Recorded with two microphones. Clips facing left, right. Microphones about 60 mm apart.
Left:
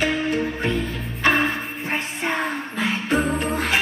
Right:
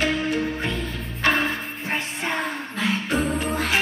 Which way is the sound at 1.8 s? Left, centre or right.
Centre.